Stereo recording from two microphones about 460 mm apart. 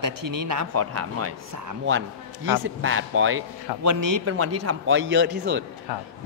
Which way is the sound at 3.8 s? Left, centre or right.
Right.